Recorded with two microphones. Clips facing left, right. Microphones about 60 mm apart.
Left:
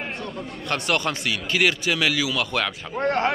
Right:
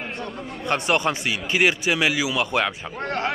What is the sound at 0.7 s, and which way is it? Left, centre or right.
Speech, centre.